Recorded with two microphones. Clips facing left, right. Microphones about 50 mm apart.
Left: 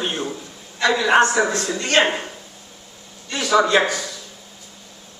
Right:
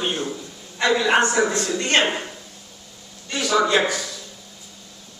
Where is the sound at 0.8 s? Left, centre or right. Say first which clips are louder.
Left 1 dB; right.